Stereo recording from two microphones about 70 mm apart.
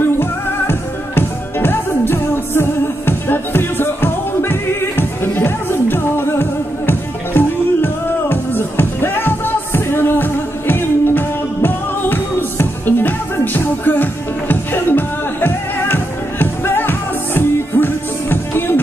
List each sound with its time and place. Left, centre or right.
0.0 s music: left